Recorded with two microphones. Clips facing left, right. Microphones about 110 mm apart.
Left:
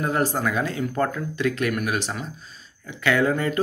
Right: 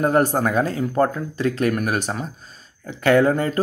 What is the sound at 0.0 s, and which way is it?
Speech, 45° right (ahead or behind).